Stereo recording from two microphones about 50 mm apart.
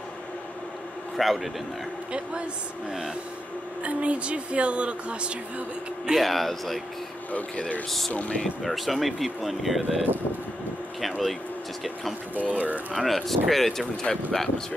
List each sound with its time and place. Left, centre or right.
1.1 s a man's voice: centre
3.8 s a woman's voice: right
6.1 s speech: centre
7.3 s speech: left
8.4 s speech: centre
12.4 s speech: right
12.9 s speech: centre